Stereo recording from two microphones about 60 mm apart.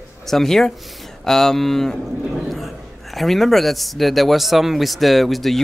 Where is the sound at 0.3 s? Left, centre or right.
Centre.